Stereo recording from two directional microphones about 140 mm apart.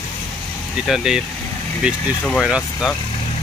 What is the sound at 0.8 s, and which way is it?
Speech, 5° right (ahead or behind).